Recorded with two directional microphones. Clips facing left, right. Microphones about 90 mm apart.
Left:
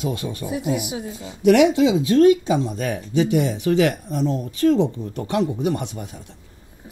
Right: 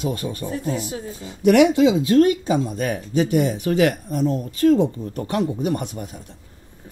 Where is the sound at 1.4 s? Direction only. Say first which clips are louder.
Even; 45° right (ahead or behind).